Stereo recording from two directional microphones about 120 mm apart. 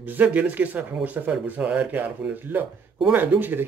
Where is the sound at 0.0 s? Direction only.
15° right (ahead or behind).